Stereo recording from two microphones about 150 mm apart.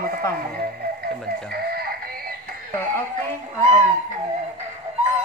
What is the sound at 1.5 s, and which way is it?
Synthetic singing, 90° right.